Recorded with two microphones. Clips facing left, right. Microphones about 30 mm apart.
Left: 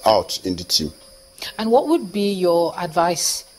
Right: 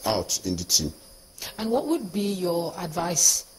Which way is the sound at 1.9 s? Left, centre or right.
Left.